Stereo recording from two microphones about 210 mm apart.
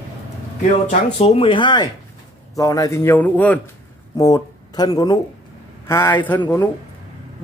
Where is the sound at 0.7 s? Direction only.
35° left (ahead or behind).